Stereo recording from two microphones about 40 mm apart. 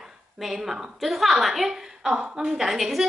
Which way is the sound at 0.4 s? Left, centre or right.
Centre.